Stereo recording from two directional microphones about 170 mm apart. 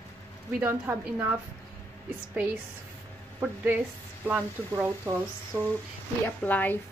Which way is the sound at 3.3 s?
10° right (ahead or behind).